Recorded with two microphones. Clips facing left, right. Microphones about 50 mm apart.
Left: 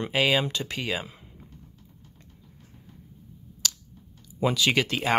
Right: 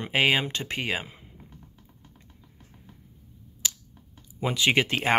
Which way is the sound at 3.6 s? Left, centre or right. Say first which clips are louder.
Left 2 dB; right.